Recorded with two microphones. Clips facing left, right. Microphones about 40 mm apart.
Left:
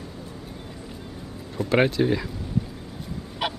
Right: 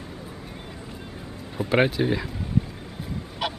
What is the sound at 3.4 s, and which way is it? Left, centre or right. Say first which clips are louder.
Goose: left 1 dB; centre.